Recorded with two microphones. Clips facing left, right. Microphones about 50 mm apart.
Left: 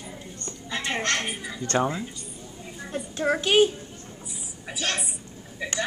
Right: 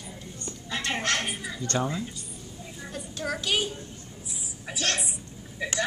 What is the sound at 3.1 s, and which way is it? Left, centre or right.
Speech, left.